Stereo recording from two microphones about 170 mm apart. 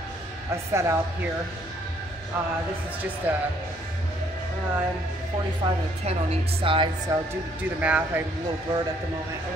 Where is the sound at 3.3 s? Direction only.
10° right (ahead or behind).